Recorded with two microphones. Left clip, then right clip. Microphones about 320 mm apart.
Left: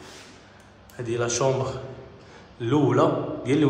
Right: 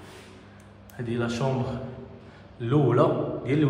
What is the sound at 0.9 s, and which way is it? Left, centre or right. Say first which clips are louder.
Speech: left 4 dB; centre.